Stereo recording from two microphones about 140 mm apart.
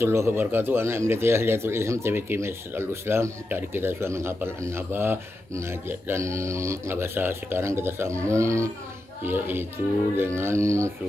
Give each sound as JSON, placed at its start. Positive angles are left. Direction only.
{"t": 0.0, "sound": "speech", "side_deg": -20}